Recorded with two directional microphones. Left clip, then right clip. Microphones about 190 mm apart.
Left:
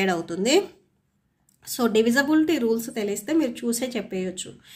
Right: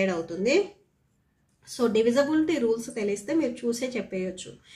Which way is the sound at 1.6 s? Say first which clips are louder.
Left 2 dB; 45° left (ahead or behind).